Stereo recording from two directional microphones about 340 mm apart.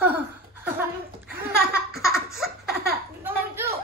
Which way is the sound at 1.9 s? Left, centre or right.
Centre.